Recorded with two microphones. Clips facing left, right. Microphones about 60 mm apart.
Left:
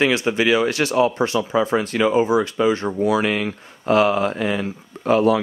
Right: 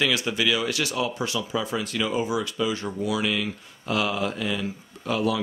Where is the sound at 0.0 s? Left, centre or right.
Left.